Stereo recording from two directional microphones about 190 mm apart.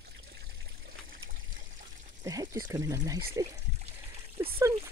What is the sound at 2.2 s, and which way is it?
Speech, 15° right (ahead or behind).